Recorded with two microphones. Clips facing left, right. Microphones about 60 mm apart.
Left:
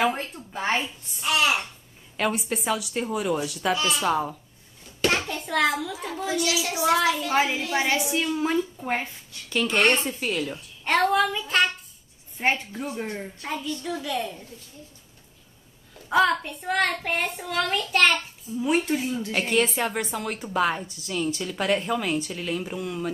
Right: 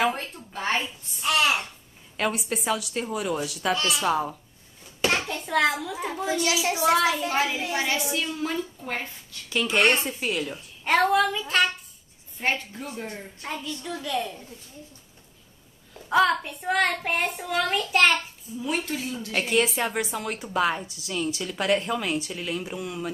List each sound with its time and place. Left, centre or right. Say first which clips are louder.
0.2 s speech: left 1 dB; centre
1.2 s a woman's voice: even; centre
5.0 s hands: left 1 dB; centre
5.8 s a child's voice: even; centre
6.2 s a child's voice: right 1 dB; right
7.2 s a woman's voice: left 2 dB; left
9.5 s a woman's voice: even; centre
12.4 s a woman's voice: left 3 dB; left
13.5 s a woman's voice: left 2 dB; centre
16.1 s a woman's voice: even; centre
18.6 s a woman's voice: left 5 dB; left
19.3 s a woman's voice: right 1 dB; centre